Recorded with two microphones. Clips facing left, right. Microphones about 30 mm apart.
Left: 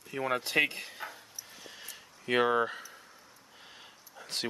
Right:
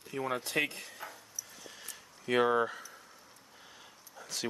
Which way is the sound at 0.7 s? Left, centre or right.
Left.